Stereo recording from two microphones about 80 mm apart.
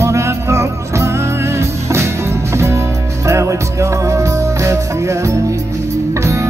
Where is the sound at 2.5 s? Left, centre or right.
Right.